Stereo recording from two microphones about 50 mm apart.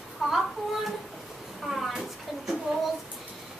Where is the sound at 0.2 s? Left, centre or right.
Centre.